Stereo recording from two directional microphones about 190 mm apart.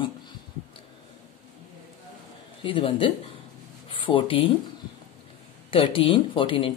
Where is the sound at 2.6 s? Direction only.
25° left (ahead or behind).